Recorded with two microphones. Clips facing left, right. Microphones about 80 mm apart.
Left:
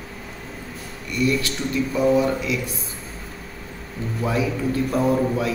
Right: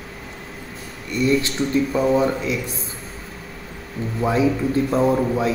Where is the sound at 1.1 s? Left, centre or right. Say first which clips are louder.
Right 3 dB; right.